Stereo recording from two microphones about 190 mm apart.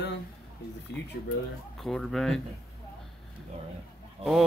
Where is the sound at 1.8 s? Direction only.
Centre (ahead or behind).